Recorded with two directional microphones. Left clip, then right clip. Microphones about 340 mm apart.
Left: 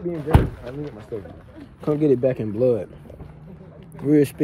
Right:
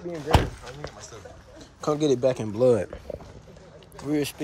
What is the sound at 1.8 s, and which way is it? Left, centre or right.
Speech, centre.